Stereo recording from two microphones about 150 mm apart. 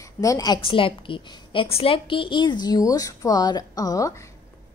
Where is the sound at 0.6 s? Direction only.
35° left (ahead or behind).